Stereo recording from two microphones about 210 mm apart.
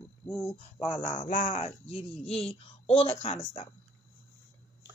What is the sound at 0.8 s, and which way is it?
Speech, 35° left (ahead or behind).